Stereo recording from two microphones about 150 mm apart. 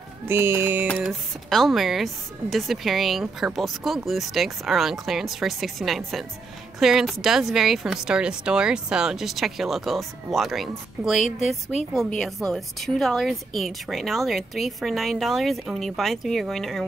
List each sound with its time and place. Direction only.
0.3 s music: 15° right (ahead or behind)
1.0 s speech: centre (ahead or behind)